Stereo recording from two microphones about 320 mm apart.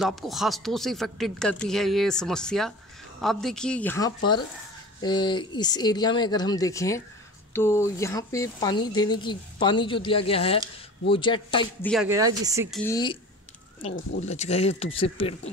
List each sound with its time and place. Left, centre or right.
0.0 s speech: centre
11.9 s speech: centre
12.7 s speech: centre
14.2 s speech: left